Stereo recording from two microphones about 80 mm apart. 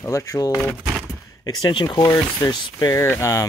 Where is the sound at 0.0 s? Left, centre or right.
Left.